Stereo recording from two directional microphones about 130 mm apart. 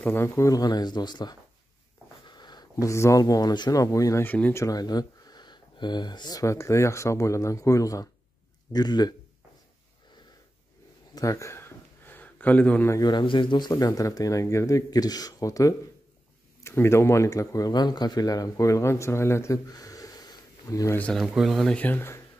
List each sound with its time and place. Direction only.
0.0 s speech: 15° left (ahead or behind)
4.6 s speech: 30° left (ahead or behind)
11.1 s a sound: 25° left (ahead or behind)
12.9 s speech: 35° left (ahead or behind)
21.0 s speech: centre (ahead or behind)
21.7 s speech: 15° left (ahead or behind)